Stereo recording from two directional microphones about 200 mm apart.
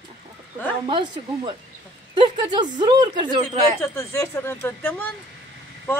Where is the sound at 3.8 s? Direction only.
15° left (ahead or behind).